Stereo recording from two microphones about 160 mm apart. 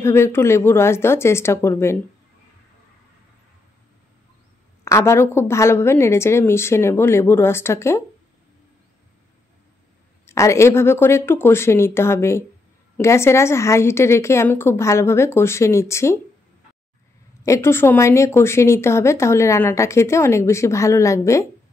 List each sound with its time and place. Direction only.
0.0 s speech: 15° left (ahead or behind)
4.8 s speech: 15° left (ahead or behind)
10.2 s speech: 20° left (ahead or behind)
17.4 s speech: 15° left (ahead or behind)